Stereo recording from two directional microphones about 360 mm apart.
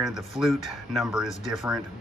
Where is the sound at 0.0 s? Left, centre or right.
Centre.